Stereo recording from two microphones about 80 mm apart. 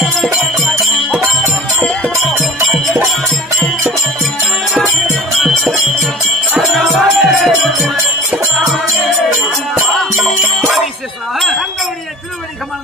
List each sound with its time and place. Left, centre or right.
2.4 s music: centre
4.7 s music: centre
10.1 s jingle bell: right
11.3 s wind chime: centre